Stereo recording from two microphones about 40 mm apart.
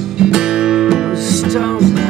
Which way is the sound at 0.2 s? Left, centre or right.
Centre.